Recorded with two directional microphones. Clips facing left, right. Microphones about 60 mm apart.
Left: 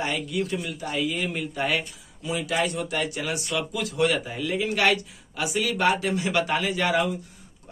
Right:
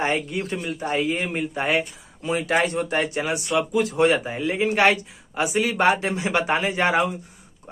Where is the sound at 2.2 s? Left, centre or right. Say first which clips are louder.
Right 4 dB; right.